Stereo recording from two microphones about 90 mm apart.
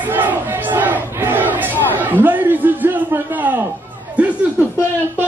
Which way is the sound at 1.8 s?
20° right (ahead or behind).